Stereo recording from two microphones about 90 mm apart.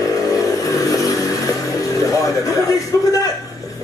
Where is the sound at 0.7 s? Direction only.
40° left (ahead or behind).